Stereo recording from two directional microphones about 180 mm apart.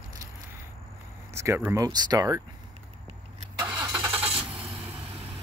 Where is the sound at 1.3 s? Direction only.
15° right (ahead or behind).